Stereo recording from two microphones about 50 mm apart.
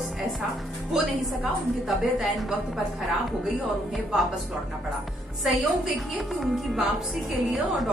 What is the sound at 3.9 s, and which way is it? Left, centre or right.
Speech, centre.